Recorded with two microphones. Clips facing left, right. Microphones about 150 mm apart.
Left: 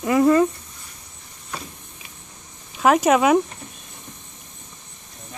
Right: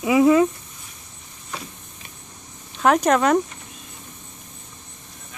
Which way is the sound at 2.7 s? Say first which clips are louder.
Left 1 dB; 5° left (ahead or behind).